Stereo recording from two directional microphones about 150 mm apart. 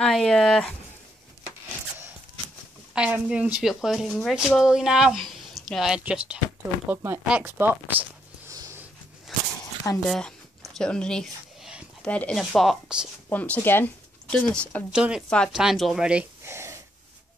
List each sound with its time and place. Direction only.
0.0 s speech: 5° left (ahead or behind)
2.9 s speech: 5° right (ahead or behind)
8.5 s snort: 20° right (ahead or behind)
10.0 s a sound: centre (ahead or behind)
12.0 s speech: 10° left (ahead or behind)
13.3 s speech: 10° left (ahead or behind)
14.9 s speech: 5° right (ahead or behind)
15.2 s speech: 5° left (ahead or behind); by 16.8 s 15° right (ahead or behind)